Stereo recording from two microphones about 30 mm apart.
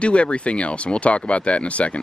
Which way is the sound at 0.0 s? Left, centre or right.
Left.